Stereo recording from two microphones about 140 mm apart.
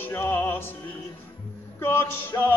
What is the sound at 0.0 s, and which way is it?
Music, 15° left (ahead or behind).